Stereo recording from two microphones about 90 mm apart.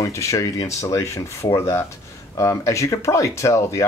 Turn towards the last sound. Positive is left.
turn(degrees=35)  # may be behind; listen again after turning